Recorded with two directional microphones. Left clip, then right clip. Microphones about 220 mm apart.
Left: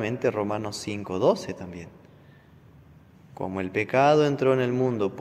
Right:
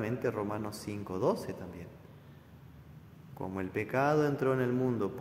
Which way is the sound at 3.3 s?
25° left (ahead or behind).